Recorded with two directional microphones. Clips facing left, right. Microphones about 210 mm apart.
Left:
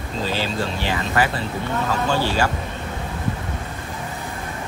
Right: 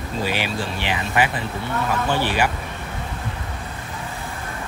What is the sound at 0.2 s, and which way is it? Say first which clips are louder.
Speech: left 1 dB; 15° right (ahead or behind).